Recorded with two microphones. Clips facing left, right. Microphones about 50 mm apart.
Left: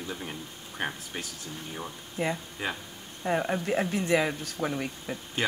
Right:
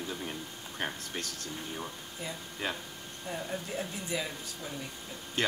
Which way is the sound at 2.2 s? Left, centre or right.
Left.